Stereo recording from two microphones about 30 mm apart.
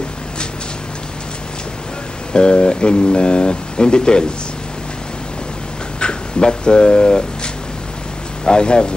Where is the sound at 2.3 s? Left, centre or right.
Left.